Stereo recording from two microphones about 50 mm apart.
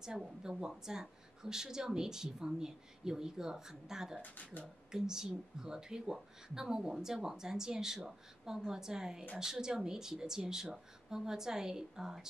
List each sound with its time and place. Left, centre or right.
0.0 s speech: centre
4.2 s speech: left
4.9 s speech: centre